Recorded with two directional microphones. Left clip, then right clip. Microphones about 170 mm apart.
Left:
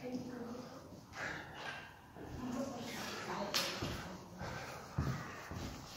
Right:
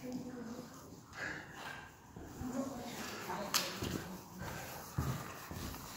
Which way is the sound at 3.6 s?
70° right (ahead or behind).